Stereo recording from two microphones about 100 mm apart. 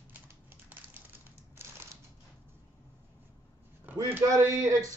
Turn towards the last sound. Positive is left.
turn(degrees=-35)  # may be behind; listen again after turning